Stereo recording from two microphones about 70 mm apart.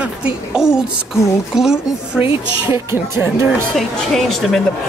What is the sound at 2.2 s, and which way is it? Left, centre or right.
Speech, right.